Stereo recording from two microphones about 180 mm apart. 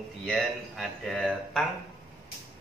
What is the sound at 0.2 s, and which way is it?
Speech, centre (ahead or behind).